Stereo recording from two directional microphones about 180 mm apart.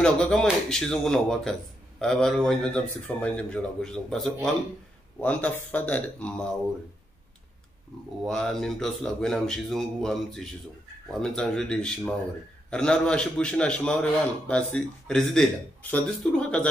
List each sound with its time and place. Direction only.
0.0 s speech: 5° left (ahead or behind)
8.2 s speech: centre (ahead or behind)